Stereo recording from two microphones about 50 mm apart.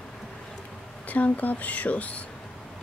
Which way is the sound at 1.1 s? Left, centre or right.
Left.